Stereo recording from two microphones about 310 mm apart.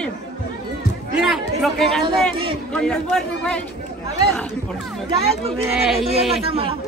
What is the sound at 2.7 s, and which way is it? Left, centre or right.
Speech, centre.